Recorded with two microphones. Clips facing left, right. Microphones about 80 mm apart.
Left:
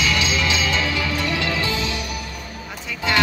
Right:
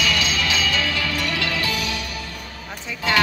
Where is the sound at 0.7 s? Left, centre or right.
Left.